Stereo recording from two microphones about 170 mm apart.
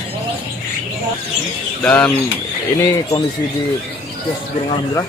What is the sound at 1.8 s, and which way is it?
Speech, 5° left (ahead or behind).